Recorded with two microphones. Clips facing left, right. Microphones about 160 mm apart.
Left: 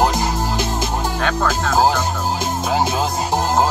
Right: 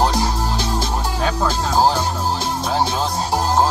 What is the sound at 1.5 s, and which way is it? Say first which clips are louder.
Speech: even; 30° right (ahead or behind).